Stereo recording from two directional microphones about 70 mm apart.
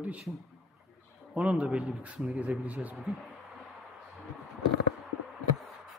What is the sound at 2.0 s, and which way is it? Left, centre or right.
Speech, centre.